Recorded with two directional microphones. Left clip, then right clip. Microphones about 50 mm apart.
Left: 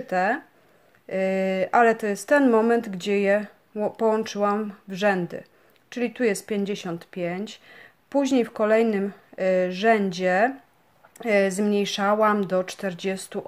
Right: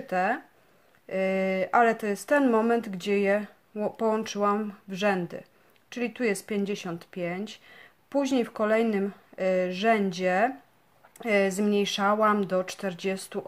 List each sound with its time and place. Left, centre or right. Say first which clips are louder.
0.0 s speech: left 3 dB; left